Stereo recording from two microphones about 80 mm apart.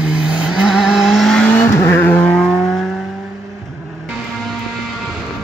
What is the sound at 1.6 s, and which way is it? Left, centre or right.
Vehicle, left.